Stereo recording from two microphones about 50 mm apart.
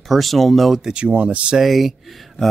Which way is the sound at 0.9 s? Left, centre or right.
Right.